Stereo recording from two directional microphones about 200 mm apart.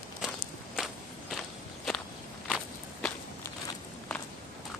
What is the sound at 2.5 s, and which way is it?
Walk, 5° left (ahead or behind).